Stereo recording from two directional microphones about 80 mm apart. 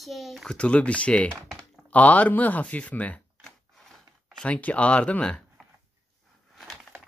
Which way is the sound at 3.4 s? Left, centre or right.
Centre.